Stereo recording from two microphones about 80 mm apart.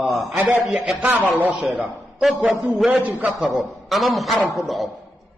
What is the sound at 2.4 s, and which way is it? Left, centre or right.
Speech, centre.